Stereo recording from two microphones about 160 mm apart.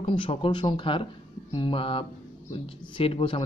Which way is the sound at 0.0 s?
35° left (ahead or behind).